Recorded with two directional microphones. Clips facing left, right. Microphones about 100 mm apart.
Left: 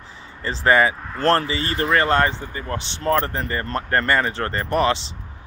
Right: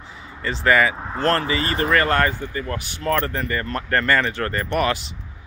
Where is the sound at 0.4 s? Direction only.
30° left (ahead or behind).